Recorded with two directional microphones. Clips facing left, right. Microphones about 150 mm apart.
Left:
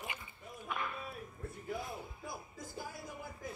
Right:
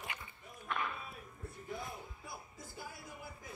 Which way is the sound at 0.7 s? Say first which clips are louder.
Right 1 dB; 5° left (ahead or behind).